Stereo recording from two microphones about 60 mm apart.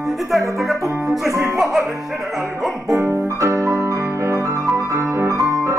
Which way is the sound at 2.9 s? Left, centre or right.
Right.